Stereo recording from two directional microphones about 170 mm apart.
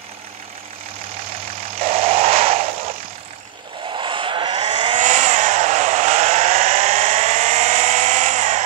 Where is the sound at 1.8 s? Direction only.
35° right (ahead or behind).